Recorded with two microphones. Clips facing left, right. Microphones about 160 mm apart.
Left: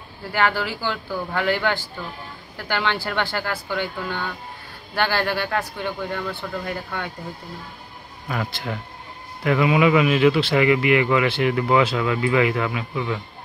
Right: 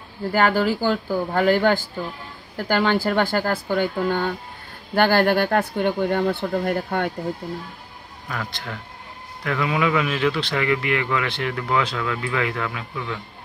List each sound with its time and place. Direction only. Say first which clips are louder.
0.3 s speech: right 4 dB; 45° right (ahead or behind)
9.4 s speech: left 5 dB; 10° left (ahead or behind)